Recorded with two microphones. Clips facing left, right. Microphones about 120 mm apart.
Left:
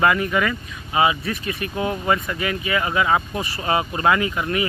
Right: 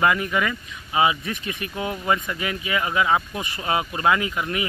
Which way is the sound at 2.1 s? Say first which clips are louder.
Right 1 dB; 15° right (ahead or behind).